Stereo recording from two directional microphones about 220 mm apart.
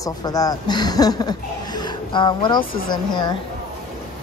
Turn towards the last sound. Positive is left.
turn(degrees=20)  # may be behind; listen again after turning